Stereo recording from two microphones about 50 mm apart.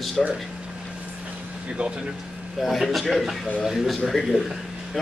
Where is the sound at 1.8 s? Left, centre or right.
Right.